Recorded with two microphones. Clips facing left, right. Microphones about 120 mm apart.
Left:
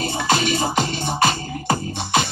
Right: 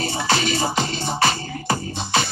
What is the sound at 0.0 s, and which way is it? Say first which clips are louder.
Music: left 1 dB; 50° left (ahead or behind).